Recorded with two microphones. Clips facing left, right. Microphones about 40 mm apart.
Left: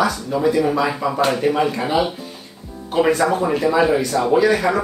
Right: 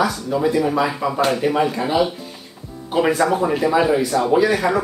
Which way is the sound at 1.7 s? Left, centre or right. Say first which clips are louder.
Right 1 dB; centre.